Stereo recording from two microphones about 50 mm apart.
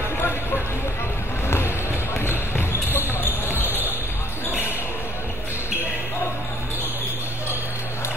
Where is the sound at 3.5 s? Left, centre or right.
Right.